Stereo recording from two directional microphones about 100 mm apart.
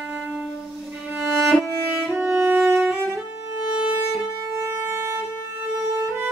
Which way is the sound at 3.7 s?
10° right (ahead or behind).